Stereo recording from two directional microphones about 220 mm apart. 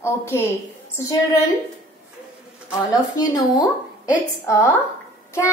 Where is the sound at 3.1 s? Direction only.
20° left (ahead or behind).